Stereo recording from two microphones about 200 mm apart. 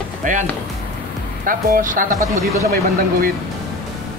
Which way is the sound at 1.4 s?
40° right (ahead or behind).